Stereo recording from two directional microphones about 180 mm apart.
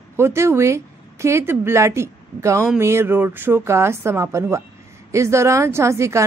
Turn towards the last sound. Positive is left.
turn(degrees=-15)  # may be behind; listen again after turning